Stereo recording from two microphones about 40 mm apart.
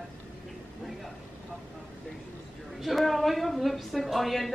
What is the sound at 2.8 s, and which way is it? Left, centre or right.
A man's voice, centre.